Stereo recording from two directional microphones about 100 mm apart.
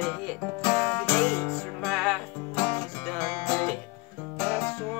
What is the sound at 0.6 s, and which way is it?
Music, 25° left (ahead or behind).